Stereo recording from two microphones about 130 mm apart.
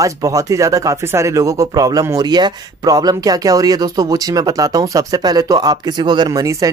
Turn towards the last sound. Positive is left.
turn(degrees=-25)  # may be behind; listen again after turning